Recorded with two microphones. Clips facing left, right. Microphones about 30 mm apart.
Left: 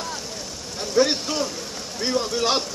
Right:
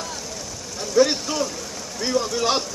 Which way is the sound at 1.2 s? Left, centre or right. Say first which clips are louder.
Right 1 dB; left.